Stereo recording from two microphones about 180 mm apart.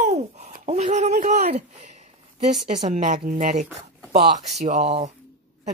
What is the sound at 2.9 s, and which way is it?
Speech, 45° right (ahead or behind).